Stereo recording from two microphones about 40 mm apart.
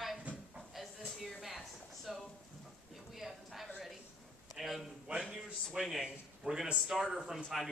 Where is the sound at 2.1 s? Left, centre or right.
Centre.